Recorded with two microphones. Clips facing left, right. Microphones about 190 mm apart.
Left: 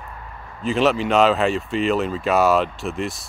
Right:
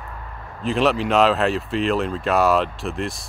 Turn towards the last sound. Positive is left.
turn(degrees=0)  # may be behind; listen again after turning